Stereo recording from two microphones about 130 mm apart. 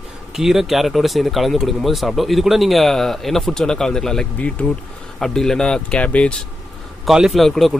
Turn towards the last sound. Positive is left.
turn(degrees=0)  # may be behind; listen again after turning